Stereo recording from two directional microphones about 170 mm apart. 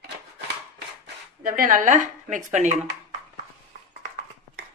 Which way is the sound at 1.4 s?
55° right (ahead or behind).